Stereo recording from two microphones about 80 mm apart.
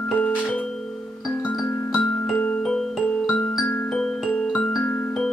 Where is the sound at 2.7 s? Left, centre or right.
Centre.